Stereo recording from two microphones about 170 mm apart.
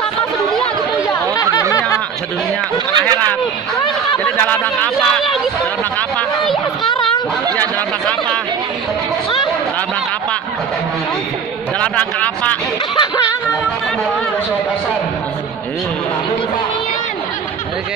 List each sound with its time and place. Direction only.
1.0 s chatter: 20° left (ahead or behind)
1.7 s snicker: 20° left (ahead or behind)
2.9 s speech: 25° right (ahead or behind)
4.2 s a man's voice: 10° left (ahead or behind)
5.9 s a sound: 5° left (ahead or behind)
11.8 s speech: 10° left (ahead or behind)
12.9 s a sound: 25° left (ahead or behind)